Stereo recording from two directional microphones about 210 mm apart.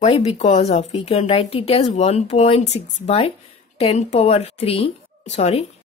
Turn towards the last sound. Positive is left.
turn(degrees=30)  # may be behind; listen again after turning